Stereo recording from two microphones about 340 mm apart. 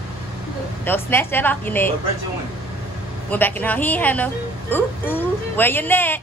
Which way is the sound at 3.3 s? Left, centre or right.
Centre.